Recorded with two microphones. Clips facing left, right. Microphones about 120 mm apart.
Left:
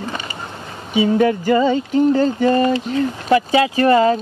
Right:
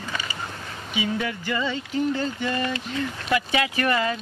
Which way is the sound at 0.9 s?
40° left (ahead or behind).